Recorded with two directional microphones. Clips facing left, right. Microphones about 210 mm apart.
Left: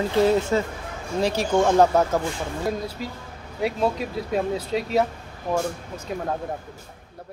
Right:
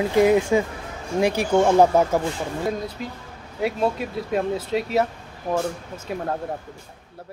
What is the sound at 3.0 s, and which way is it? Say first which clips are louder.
Speech: even; centre (ahead or behind).